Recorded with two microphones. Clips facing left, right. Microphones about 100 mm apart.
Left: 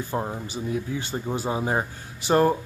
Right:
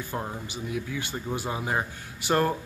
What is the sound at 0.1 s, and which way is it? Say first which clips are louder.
Speech: left 5 dB; 25° left (ahead or behind).